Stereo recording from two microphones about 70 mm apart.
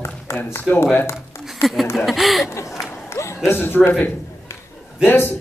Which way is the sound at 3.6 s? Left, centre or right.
Left.